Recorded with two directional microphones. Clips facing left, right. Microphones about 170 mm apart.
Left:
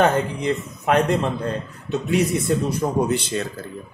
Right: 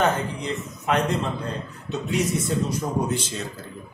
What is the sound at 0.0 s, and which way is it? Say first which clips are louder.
Speech: left 5 dB; 55° left (ahead or behind).